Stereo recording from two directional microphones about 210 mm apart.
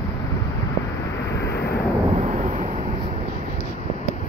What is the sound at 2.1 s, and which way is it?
Vehicle, 30° right (ahead or behind).